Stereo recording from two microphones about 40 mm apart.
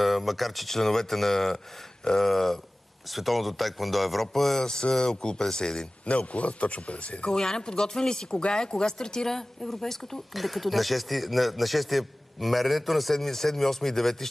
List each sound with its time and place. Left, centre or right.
0.0 s speech: centre
4.6 s speech: centre
6.0 s a man's voice: left
7.2 s speech: centre